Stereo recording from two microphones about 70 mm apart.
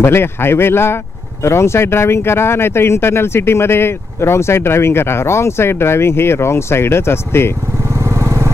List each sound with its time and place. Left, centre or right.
0.0 s speech: left
7.9 s vehicle: right